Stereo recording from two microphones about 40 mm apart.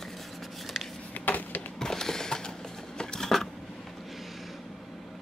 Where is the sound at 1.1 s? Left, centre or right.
Left.